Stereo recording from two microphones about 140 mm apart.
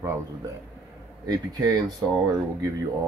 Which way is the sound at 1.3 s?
30° right (ahead or behind).